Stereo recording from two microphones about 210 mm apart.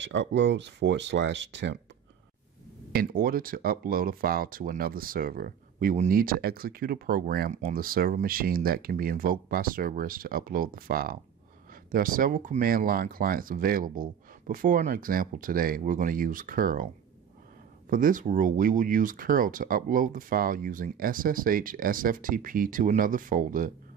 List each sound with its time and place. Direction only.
0.0 s speech: 60° right (ahead or behind)
2.9 s speech: 45° right (ahead or behind)
17.8 s speech: 40° right (ahead or behind)